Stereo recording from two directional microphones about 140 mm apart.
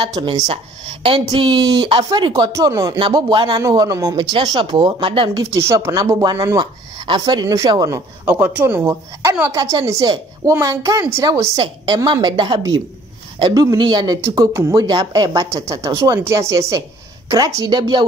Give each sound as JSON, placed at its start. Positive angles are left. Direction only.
{"t": 0.0, "sound": "speech", "side_deg": -30}
{"t": 5.3, "sound": "speech", "side_deg": -20}
{"t": 11.5, "sound": "speech", "side_deg": -30}